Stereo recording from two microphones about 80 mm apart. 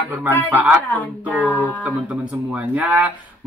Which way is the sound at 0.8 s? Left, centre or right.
Left.